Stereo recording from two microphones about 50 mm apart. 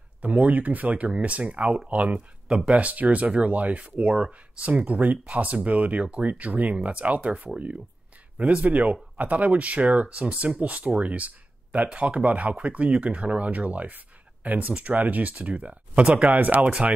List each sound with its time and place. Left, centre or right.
0.2 s speech: right
16.3 s speech: right